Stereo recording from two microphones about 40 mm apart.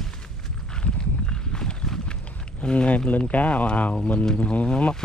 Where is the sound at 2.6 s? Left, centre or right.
Left.